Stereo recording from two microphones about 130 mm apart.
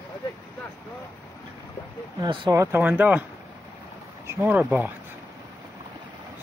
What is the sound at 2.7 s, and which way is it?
Speech, 15° right (ahead or behind).